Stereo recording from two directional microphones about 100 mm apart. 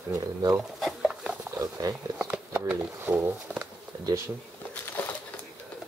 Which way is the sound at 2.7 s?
20° right (ahead or behind).